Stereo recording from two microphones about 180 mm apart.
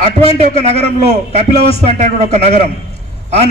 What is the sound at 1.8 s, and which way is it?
Speech, 40° right (ahead or behind).